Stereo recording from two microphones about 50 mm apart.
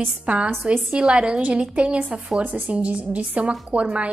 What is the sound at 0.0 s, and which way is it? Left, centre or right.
A woman's voice, right.